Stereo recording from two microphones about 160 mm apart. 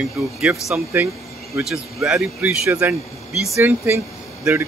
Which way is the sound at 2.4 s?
10° right (ahead or behind).